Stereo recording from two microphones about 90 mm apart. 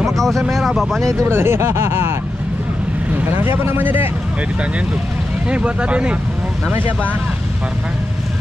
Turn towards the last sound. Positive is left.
turn(degrees=-25)  # may be behind; listen again after turning